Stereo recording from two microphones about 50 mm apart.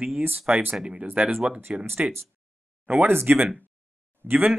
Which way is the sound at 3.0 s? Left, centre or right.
Right.